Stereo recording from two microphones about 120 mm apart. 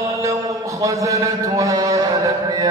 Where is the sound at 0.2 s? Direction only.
25° right (ahead or behind).